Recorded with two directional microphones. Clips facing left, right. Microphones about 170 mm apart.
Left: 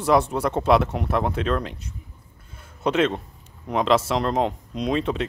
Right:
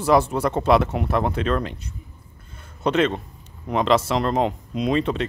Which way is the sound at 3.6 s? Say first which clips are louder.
Right 1 dB; centre (ahead or behind).